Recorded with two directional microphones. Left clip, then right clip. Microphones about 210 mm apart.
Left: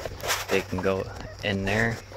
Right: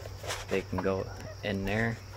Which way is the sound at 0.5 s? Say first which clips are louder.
Left 3 dB; 45° left (ahead or behind).